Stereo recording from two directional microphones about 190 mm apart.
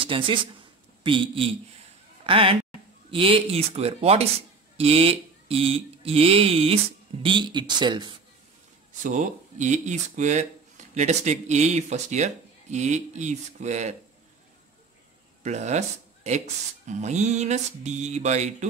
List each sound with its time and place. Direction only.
0.0 s speech: 25° right (ahead or behind)
3.1 s music: 30° right (ahead or behind)
4.7 s speech: 30° right (ahead or behind)
9.0 s music: 40° right (ahead or behind)
15.4 s music: 35° right (ahead or behind)